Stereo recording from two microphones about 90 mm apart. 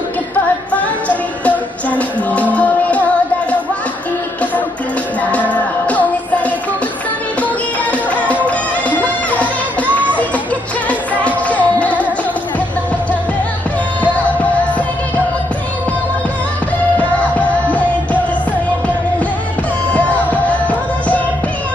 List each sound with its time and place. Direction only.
0.7 s music: 15° left (ahead or behind)
5.2 s music: 15° left (ahead or behind)
8.5 s music: 15° left (ahead or behind)
10.9 s music: 15° left (ahead or behind)
17.2 s music: 15° left (ahead or behind)
19.9 s music: 15° left (ahead or behind)